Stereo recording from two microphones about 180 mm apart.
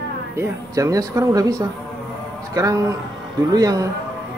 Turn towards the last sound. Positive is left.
turn(degrees=-20)  # may be behind; listen again after turning